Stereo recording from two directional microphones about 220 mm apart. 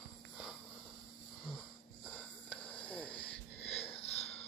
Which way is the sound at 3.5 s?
30° left (ahead or behind).